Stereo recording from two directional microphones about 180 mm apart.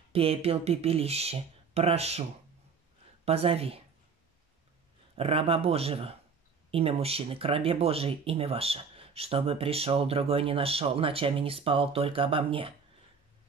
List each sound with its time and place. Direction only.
0.1 s speech: 35° right (ahead or behind)
3.3 s speech: 35° right (ahead or behind)
5.1 s speech: 30° right (ahead or behind)